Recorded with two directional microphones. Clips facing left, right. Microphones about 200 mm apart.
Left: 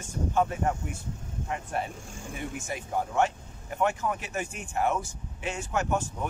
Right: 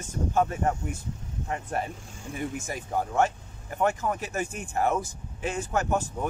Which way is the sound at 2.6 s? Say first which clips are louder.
Right 1 dB; 40° right (ahead or behind).